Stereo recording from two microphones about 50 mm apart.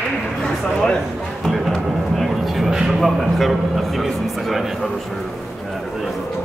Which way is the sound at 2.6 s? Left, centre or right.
Centre.